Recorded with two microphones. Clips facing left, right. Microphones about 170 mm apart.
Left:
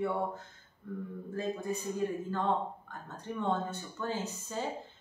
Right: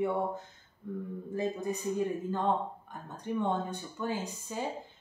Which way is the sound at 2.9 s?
15° right (ahead or behind).